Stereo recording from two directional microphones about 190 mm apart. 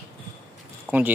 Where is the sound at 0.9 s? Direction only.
5° left (ahead or behind).